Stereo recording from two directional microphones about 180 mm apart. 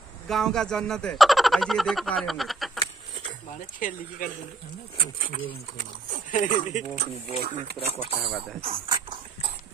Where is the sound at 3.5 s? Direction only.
45° left (ahead or behind).